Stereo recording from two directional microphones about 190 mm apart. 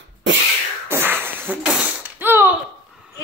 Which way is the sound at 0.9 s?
10° right (ahead or behind).